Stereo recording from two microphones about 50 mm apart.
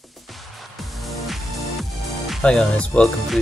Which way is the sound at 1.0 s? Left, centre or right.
Centre.